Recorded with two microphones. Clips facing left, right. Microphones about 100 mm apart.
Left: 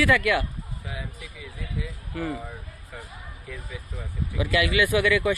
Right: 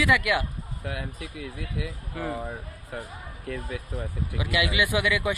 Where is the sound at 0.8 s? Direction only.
60° right (ahead or behind).